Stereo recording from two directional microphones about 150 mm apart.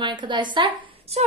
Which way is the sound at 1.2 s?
45° right (ahead or behind).